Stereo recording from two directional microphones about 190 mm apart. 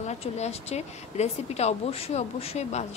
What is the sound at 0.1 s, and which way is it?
A woman's voice, 35° left (ahead or behind).